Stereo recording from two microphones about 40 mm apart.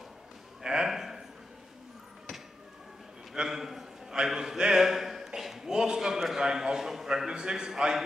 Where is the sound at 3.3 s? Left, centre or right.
Centre.